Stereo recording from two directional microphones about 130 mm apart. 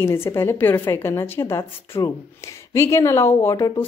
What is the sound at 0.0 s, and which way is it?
A woman's voice, 20° left (ahead or behind).